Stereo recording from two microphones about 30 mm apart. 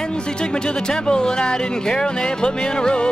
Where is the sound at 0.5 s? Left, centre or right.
Left.